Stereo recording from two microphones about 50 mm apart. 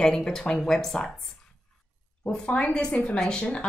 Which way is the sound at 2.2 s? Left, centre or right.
Left.